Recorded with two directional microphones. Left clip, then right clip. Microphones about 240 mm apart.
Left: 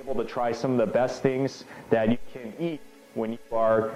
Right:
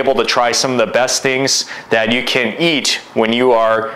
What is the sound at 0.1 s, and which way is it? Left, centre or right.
Speech, centre.